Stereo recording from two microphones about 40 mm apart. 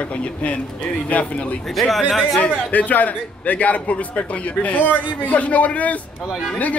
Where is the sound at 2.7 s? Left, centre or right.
Left.